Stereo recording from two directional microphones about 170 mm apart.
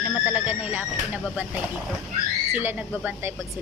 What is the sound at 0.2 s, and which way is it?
Speech, 10° right (ahead or behind).